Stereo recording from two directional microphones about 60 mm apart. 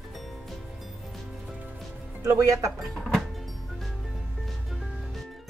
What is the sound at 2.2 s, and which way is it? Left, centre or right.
Speech, right.